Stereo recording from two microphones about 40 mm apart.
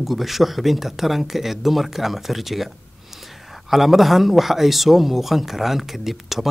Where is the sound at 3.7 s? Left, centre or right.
Centre.